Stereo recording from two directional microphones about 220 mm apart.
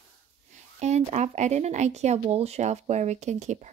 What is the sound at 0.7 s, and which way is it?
Speech, 30° right (ahead or behind).